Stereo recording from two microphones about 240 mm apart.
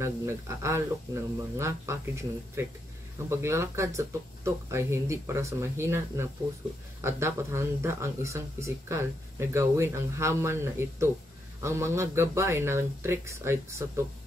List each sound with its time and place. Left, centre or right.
0.0 s speech: centre